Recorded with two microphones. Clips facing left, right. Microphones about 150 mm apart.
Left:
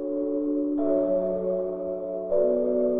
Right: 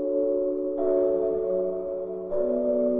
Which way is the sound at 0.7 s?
Centre (ahead or behind).